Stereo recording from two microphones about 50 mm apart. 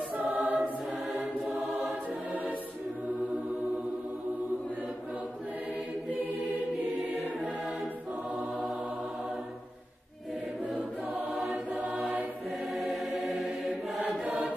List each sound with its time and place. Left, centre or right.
0.1 s choir: right
12.7 s choir: centre